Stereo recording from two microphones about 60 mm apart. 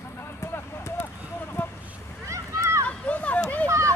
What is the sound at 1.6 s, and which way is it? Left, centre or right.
Vehicle, left.